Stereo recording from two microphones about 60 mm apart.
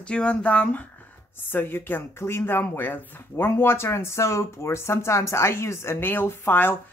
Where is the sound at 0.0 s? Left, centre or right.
Centre; by 6.7 s left.